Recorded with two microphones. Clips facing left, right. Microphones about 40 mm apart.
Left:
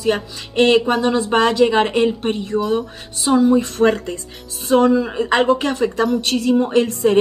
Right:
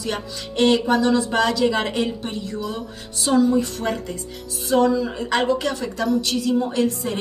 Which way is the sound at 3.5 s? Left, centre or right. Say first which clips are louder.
Left 7 dB; left.